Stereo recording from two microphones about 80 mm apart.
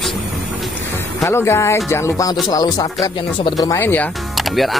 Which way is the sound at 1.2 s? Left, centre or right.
Left.